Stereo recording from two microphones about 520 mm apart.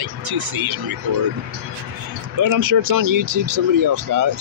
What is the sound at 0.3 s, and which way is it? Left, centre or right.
Speech, right.